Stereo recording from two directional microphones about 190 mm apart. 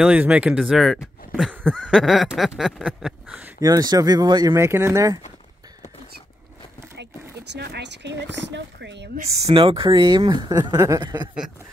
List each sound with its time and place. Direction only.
0.0 s a sound: 5° right (ahead or behind)
3.6 s speech: 20° right (ahead or behind)
7.5 s speech: 60° right (ahead or behind)
9.2 s speech: 35° right (ahead or behind)